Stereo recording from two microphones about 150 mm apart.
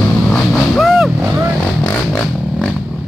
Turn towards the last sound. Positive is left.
turn(degrees=0)  # may be behind; listen again after turning